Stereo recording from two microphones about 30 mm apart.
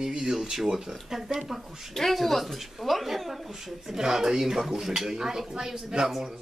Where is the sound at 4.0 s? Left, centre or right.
Centre.